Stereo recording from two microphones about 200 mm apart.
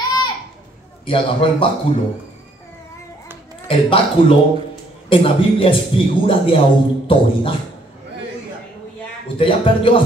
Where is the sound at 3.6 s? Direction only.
30° left (ahead or behind).